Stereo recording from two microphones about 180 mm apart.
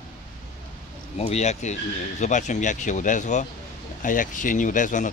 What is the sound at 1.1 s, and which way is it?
Speech, 35° left (ahead or behind).